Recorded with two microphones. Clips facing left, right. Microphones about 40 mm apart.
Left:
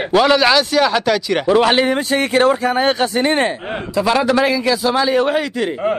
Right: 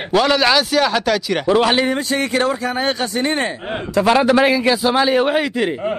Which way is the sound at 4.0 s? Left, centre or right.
Right.